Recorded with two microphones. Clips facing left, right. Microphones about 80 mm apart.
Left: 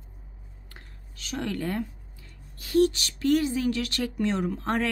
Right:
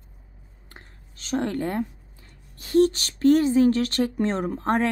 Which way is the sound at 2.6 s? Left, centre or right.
Right.